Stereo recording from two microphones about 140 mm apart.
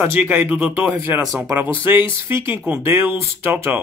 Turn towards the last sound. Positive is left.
turn(degrees=-15)  # may be behind; listen again after turning